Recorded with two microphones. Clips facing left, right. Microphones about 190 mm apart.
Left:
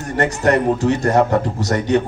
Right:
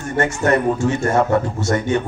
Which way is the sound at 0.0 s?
35° left (ahead or behind).